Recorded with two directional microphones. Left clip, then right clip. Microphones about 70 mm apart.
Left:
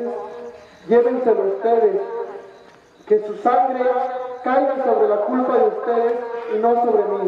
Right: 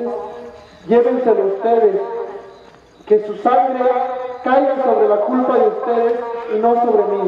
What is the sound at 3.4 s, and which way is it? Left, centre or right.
A man's voice, right.